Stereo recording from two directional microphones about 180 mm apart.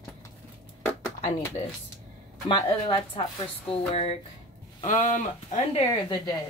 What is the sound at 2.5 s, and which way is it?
Speech, 30° left (ahead or behind).